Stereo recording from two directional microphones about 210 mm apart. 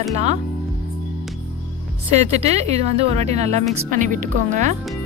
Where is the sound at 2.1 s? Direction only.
30° right (ahead or behind).